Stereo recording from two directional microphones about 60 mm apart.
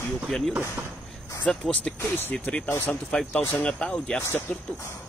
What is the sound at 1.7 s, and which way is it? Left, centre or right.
Speech, centre.